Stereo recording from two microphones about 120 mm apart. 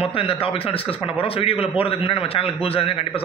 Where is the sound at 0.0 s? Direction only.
50° left (ahead or behind).